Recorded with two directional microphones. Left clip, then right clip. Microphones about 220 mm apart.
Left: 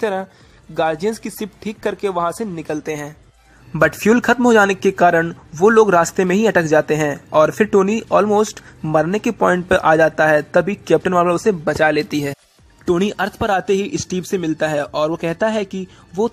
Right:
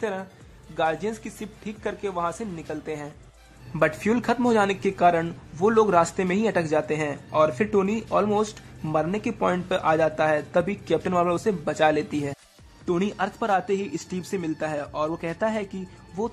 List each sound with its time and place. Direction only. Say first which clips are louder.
0.0 s speech: left 9 dB; 30° left (ahead or behind)
12.8 s speech: left 8 dB; 30° left (ahead or behind)